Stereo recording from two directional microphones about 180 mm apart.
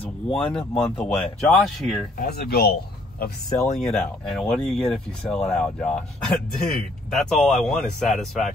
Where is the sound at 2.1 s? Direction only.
60° left (ahead or behind).